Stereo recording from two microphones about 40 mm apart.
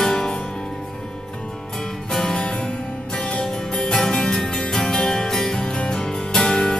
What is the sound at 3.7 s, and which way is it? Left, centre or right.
Music, centre.